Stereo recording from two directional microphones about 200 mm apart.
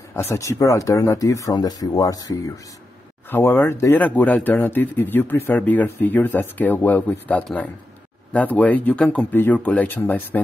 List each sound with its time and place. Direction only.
0.3 s speech: 15° left (ahead or behind)